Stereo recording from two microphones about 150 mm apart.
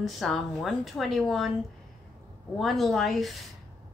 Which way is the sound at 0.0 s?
Centre (ahead or behind).